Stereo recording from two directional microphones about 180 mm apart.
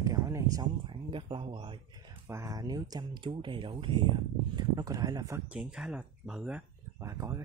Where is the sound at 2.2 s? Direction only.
15° right (ahead or behind).